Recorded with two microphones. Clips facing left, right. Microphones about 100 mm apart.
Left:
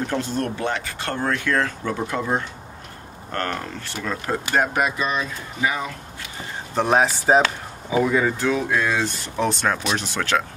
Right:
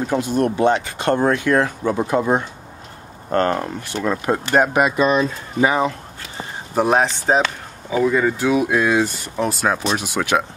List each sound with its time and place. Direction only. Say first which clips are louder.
0.1 s speech: right 6 dB; 15° right (ahead or behind)
4.9 s speech: right 8 dB; 35° right (ahead or behind)
6.7 s speech: right 2 dB; 5° right (ahead or behind)
8.5 s speech: right 4 dB; 15° right (ahead or behind)